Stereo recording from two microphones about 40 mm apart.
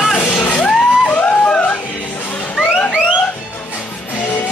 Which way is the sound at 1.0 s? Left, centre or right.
Left.